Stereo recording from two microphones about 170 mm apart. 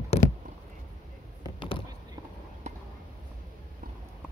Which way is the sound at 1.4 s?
30° left (ahead or behind).